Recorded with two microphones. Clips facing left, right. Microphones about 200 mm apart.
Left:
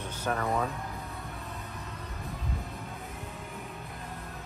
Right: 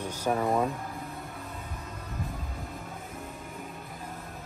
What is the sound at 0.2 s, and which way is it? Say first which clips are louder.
Speech: right 4 dB; 10° right (ahead or behind).